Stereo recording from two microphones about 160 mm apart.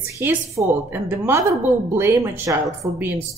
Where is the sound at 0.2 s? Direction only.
10° right (ahead or behind).